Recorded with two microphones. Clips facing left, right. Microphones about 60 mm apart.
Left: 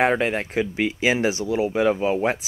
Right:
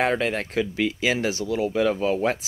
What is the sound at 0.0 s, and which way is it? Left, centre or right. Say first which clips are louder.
Speech: left 3 dB; left.